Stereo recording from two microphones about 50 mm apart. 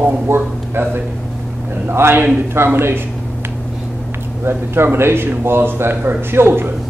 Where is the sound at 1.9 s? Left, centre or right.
Right.